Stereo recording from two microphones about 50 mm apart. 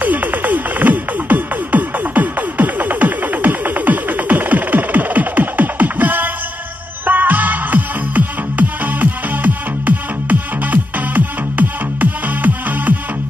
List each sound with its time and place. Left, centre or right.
0.0 s music: right